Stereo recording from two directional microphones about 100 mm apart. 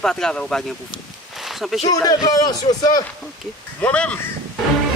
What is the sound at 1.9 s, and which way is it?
A man's voice, 40° left (ahead or behind).